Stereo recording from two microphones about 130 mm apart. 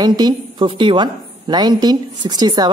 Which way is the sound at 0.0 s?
30° right (ahead or behind).